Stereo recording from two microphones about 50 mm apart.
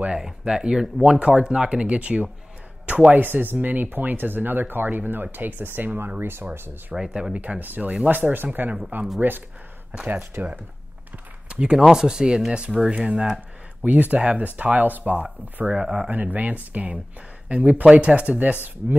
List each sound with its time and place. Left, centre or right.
0.1 s speech: centre; by 6.4 s right
7.0 s speech: centre
7.4 s speech: right
10.4 s speech: right
11.4 s a sound: centre
11.9 s speech: centre
13.8 s speech: right
16.2 s speech: right